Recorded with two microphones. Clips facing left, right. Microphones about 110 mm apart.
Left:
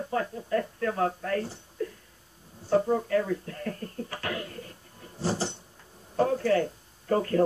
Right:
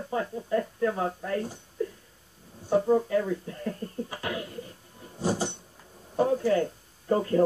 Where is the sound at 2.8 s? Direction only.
15° right (ahead or behind).